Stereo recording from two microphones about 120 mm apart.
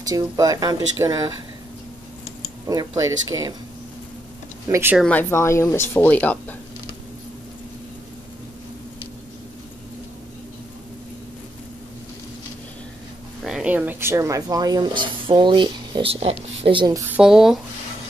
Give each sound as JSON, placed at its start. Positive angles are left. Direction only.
{"t": 0.0, "sound": "speech", "side_deg": -30}
{"t": 2.6, "sound": "speech", "side_deg": -30}
{"t": 4.6, "sound": "speech", "side_deg": -20}
{"t": 5.3, "sound": "speech", "side_deg": 25}
{"t": 13.4, "sound": "speech", "side_deg": -5}
{"t": 16.6, "sound": "speech", "side_deg": -45}
{"t": 17.2, "sound": "speech", "side_deg": -5}